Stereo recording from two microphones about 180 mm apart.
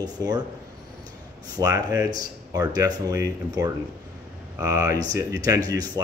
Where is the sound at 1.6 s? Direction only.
20° right (ahead or behind).